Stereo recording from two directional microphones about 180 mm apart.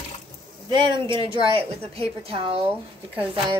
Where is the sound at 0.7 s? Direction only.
25° right (ahead or behind).